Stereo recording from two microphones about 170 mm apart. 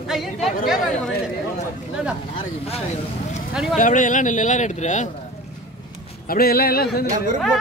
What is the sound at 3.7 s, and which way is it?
Speech, 50° left (ahead or behind).